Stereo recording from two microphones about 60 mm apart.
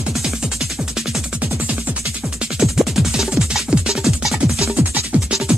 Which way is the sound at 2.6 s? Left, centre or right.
Centre.